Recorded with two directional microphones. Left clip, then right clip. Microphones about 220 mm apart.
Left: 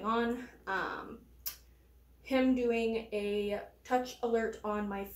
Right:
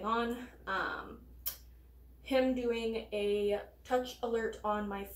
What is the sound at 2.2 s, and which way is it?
A woman's voice, 10° left (ahead or behind).